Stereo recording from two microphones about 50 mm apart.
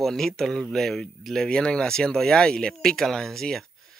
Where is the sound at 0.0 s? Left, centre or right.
Centre.